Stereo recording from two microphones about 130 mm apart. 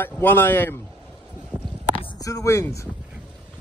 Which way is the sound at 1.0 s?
10° right (ahead or behind).